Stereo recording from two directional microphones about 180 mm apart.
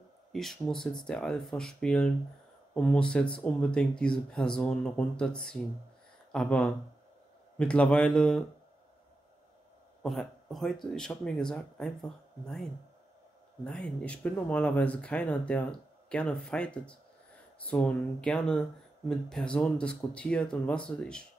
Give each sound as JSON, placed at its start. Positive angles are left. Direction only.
{"t": 0.3, "sound": "speech", "side_deg": 0}
{"t": 10.0, "sound": "speech", "side_deg": 0}
{"t": 13.7, "sound": "speech", "side_deg": 5}